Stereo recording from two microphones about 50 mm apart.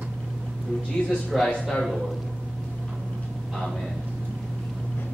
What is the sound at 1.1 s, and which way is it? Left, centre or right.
Speech, centre.